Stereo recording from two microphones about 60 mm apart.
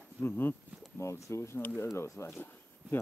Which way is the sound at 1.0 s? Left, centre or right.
Left.